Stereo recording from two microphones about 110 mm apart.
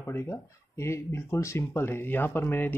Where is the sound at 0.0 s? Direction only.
20° left (ahead or behind).